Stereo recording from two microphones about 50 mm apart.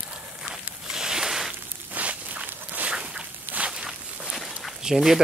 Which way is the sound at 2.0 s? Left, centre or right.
Right.